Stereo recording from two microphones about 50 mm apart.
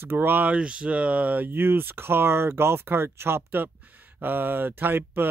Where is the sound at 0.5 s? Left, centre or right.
Right.